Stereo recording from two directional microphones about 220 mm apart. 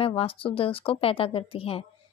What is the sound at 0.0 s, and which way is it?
A woman's voice, 25° left (ahead or behind).